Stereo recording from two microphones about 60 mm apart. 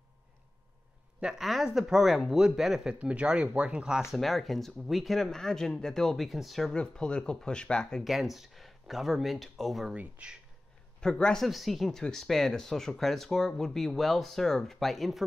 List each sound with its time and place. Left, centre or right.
1.4 s speech: centre
4.1 s speech: centre
6.7 s speech: centre
8.0 s speech: centre
9.9 s speech: right
11.0 s speech: centre
11.4 s speech: centre